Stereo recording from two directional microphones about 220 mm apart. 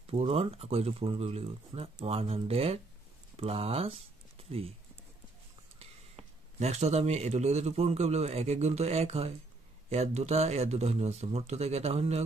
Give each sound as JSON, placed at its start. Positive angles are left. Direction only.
{"t": 0.0, "sound": "speech", "side_deg": -25}
{"t": 5.8, "sound": "speech", "side_deg": -30}